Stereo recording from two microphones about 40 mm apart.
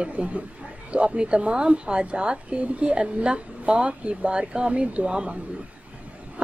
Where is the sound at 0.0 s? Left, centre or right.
Right.